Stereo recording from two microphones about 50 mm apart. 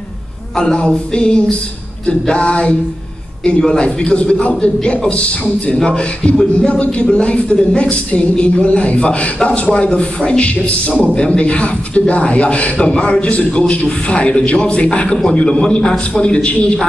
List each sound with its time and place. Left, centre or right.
0.6 s a man's voice: centre